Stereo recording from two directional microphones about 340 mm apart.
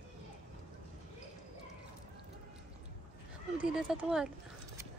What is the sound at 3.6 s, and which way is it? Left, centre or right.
Speech, centre.